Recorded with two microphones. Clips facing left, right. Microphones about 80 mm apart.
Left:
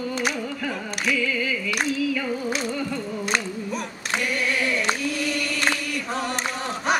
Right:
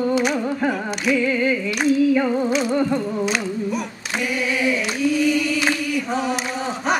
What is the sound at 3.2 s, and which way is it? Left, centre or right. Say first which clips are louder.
Music: right 4 dB; centre.